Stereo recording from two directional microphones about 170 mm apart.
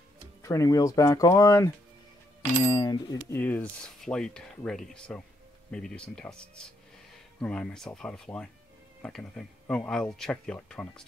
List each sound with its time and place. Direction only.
0.4 s speech: 20° left (ahead or behind)